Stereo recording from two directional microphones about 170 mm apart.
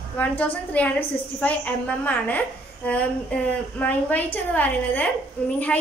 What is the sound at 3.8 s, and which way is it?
A woman's voice, 10° left (ahead or behind).